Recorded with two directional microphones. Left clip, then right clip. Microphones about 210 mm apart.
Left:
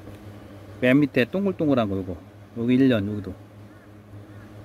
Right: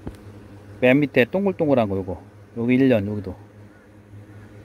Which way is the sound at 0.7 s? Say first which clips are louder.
Right 3 dB; 5° right (ahead or behind).